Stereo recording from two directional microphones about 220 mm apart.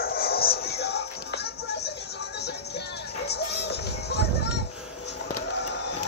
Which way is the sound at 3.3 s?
50° left (ahead or behind).